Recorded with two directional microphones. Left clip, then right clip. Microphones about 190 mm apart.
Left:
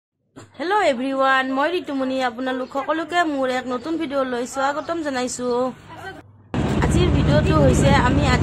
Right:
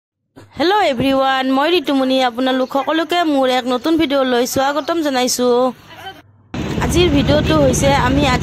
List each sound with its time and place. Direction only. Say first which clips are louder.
0.6 s speech: right 5 dB; 45° right (ahead or behind)
6.8 s speech: right 8 dB; 40° right (ahead or behind)